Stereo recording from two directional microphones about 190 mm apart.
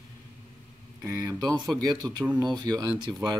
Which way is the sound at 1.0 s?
20° right (ahead or behind).